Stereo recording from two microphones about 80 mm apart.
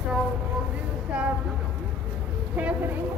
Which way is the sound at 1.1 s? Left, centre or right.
Centre.